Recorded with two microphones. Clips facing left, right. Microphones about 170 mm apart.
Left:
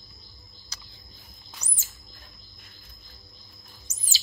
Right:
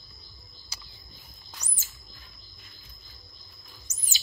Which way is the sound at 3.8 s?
30° left (ahead or behind).